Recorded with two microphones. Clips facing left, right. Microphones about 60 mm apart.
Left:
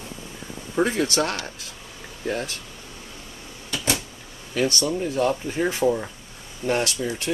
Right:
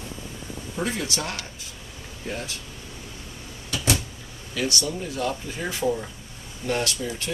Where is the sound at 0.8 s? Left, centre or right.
Left.